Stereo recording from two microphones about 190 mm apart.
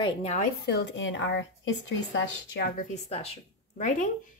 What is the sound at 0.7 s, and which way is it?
A woman's voice, 65° left (ahead or behind).